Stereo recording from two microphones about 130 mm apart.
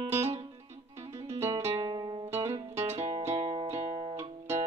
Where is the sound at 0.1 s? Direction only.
55° right (ahead or behind).